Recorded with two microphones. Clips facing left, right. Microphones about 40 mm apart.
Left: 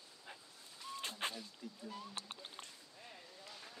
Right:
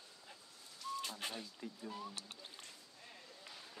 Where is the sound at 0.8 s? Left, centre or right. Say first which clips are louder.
Even; left.